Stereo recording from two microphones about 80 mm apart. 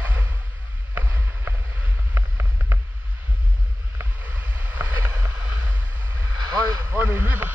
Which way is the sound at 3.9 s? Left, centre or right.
Right.